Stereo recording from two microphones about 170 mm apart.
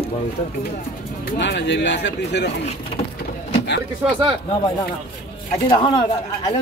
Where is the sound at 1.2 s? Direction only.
90° left.